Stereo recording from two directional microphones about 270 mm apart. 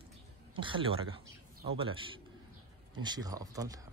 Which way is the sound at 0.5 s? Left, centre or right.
Centre.